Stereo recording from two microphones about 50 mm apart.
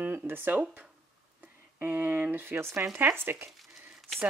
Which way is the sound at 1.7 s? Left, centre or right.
Right.